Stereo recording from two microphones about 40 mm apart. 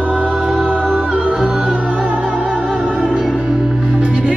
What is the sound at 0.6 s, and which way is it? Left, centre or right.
Music, right.